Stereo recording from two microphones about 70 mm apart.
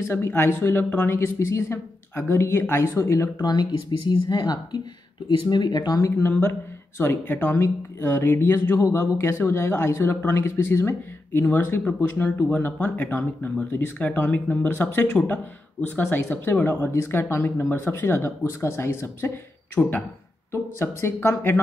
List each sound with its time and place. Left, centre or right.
0.1 s speech: left
3.3 s speech: left
5.5 s speech: left
6.1 s speech: left
19.8 s speech: centre
20.5 s speech: left